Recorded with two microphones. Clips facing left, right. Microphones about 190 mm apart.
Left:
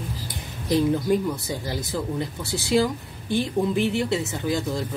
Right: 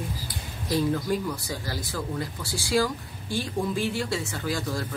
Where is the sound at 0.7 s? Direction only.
20° left (ahead or behind).